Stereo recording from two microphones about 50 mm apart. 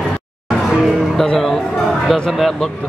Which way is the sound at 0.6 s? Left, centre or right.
Centre.